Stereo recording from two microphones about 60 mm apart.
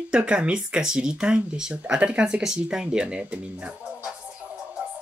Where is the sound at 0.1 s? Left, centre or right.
Centre.